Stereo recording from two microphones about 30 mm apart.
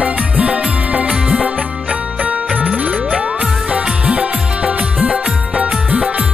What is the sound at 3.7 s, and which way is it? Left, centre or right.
Music, right.